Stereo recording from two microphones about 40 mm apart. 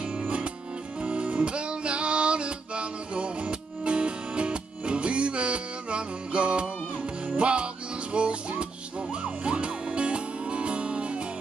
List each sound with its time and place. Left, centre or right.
0.2 s music: right